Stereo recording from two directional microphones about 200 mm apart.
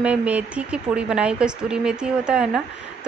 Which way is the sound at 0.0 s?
5° right (ahead or behind).